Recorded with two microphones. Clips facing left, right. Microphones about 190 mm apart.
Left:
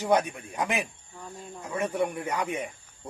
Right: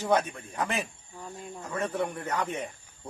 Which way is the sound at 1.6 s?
10° left (ahead or behind).